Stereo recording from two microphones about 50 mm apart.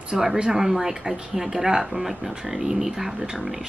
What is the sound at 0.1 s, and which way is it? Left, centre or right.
Speech, centre.